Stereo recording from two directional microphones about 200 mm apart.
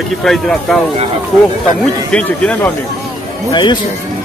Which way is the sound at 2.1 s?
5° left (ahead or behind).